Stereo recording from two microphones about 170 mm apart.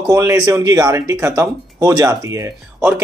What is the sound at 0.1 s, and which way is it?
Speech, 20° right (ahead or behind).